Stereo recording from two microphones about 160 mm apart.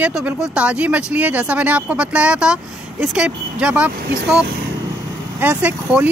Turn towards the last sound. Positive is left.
turn(degrees=-10)  # may be behind; listen again after turning